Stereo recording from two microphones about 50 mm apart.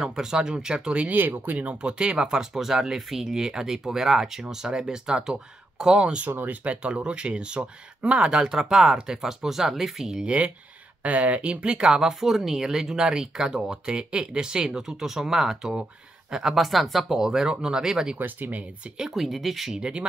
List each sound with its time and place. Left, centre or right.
0.0 s speech: centre
1.0 s speech: right; by 6.2 s centre
6.2 s speech: right
6.7 s speech: right; by 10.1 s centre
10.1 s speech: right
16.5 s speech: centre
17.2 s speech: centre
18.2 s speech: right
18.9 s speech: centre
19.7 s speech: right